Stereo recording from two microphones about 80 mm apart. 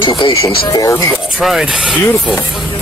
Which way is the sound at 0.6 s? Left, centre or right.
Left.